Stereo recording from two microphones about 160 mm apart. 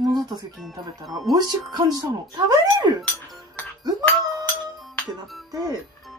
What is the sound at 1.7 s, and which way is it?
Speech, 25° right (ahead or behind).